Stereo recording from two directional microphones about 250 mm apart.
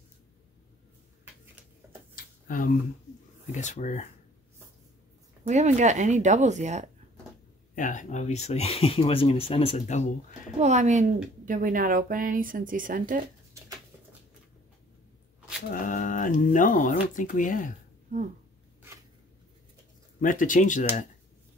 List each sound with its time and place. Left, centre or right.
2.1 s a sound: left
3.5 s speech: left
5.5 s speech: right
7.7 s speech: left
10.6 s speech: right
15.7 s speech: left
20.2 s speech: left